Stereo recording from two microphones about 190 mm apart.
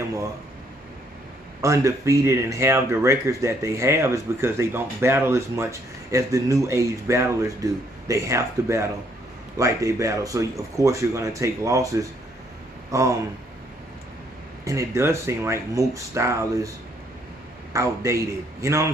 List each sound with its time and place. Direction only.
1.6 s speech: 15° right (ahead or behind)
14.6 s speech: 15° right (ahead or behind)
17.7 s speech: 15° right (ahead or behind)